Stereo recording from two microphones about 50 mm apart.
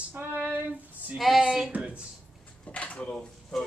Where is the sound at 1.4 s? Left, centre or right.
Centre.